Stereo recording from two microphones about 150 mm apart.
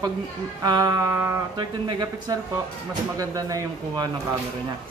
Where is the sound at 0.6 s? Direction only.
25° right (ahead or behind).